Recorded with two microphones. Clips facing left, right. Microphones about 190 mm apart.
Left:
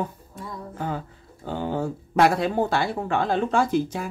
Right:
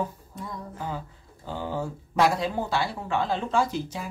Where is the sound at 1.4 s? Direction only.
60° left (ahead or behind).